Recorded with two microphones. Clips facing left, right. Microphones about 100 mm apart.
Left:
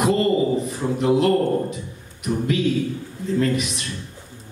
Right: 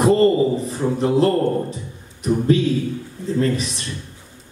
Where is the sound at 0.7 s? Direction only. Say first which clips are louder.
Even; 35° right (ahead or behind).